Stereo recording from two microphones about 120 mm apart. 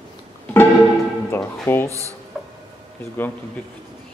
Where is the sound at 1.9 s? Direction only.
25° right (ahead or behind).